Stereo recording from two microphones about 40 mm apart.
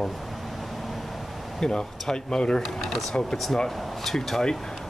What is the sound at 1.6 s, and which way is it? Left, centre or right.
Speech, centre.